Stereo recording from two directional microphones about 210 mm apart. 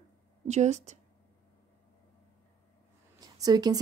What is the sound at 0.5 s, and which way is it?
Speech, 35° right (ahead or behind).